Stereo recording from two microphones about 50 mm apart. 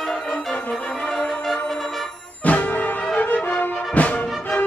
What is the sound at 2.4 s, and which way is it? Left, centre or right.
Music, left.